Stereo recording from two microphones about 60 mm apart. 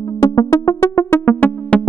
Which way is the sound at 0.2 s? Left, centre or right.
Left.